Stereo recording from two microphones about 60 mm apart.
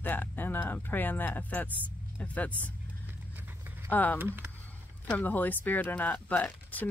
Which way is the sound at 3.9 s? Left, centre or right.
Left.